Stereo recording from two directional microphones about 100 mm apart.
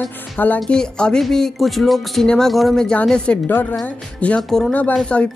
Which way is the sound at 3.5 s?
20° left (ahead or behind).